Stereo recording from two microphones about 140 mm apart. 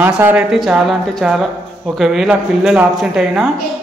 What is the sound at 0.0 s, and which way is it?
Speech, 15° right (ahead or behind).